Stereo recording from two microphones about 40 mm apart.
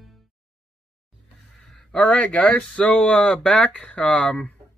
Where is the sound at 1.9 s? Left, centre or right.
Left.